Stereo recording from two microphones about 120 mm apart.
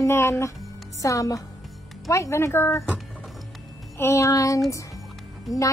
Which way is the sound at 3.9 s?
20° left (ahead or behind).